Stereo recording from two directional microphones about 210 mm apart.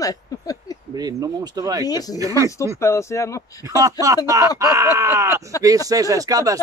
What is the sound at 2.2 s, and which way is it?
Speech, 15° right (ahead or behind).